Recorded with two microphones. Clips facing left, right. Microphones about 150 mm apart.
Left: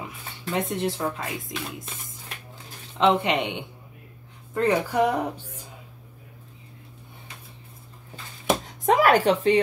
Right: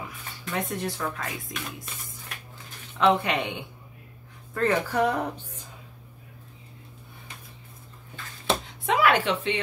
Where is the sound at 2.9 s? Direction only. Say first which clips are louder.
Left 1 dB; 20° left (ahead or behind).